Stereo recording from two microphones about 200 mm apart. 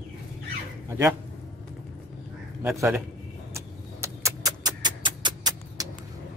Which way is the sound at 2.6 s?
15° right (ahead or behind).